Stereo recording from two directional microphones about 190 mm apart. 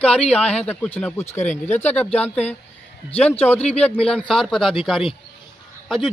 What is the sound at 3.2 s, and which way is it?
A man's voice, 5° left (ahead or behind).